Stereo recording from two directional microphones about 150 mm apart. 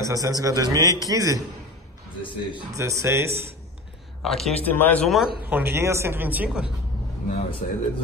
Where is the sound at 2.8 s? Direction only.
20° right (ahead or behind).